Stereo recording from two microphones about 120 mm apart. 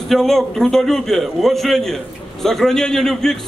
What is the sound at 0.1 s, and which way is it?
A man's voice, centre (ahead or behind).